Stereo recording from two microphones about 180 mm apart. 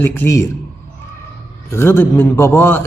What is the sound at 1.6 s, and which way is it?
Speech, 15° left (ahead or behind).